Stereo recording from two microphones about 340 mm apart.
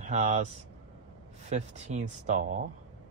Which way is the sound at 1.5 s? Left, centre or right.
Centre.